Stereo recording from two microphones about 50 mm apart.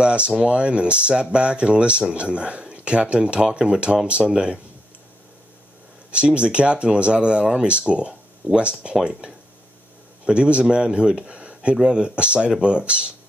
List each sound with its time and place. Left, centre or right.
0.0 s speech: right
6.1 s speech: right